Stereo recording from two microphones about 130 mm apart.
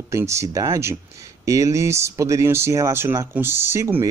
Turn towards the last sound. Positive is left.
turn(degrees=-20)  # may be behind; listen again after turning